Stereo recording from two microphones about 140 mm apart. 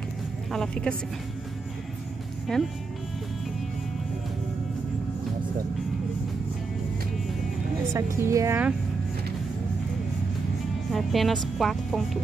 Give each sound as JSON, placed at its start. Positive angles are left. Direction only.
{"t": 0.5, "sound": "speech", "side_deg": 5}
{"t": 2.5, "sound": "speech", "side_deg": 5}
{"t": 7.9, "sound": "a woman's voice", "side_deg": -20}
{"t": 10.9, "sound": "speech", "side_deg": 0}